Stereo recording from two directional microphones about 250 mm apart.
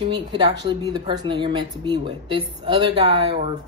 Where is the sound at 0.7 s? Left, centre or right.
Centre.